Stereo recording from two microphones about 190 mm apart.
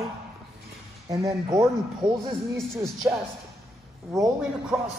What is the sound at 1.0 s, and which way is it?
Speech, 15° right (ahead or behind).